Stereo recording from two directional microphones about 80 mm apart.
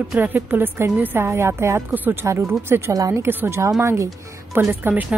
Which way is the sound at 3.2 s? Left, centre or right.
Right.